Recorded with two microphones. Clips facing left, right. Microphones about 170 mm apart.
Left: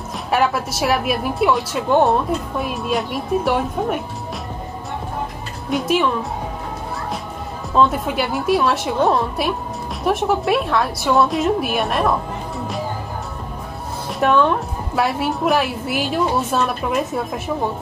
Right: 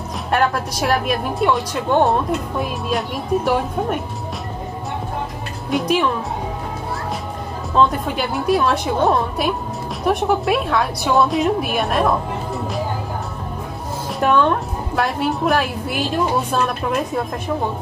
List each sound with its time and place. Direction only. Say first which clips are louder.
0.3 s a woman's voice: even; 5° left (ahead or behind)
5.7 s a woman's voice: even; centre (ahead or behind)
7.7 s a woman's voice: even; centre (ahead or behind)
14.2 s a woman's voice: even; centre (ahead or behind)